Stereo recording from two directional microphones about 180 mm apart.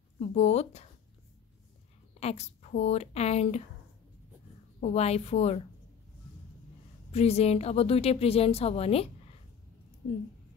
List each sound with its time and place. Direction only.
0.2 s a woman's voice: 35° left (ahead or behind)
2.1 s a woman's voice: 35° left (ahead or behind)
4.7 s a woman's voice: 35° left (ahead or behind)
7.1 s a woman's voice: 35° left (ahead or behind)